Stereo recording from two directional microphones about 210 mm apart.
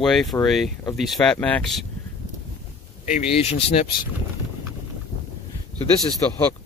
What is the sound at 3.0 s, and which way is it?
Speech, 35° left (ahead or behind).